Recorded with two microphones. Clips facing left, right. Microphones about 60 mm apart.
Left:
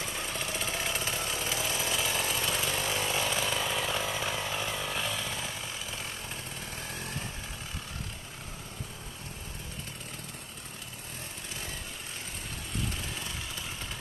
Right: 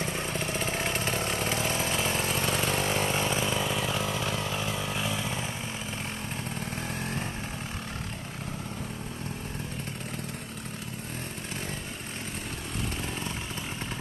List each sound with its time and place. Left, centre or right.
0.0 s vehicle: right
3.5 s chainsaw: centre